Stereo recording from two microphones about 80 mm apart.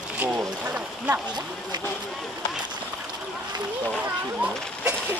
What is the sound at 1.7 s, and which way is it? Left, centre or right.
Boat, right.